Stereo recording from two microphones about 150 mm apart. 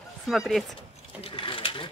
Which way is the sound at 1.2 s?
35° left (ahead or behind).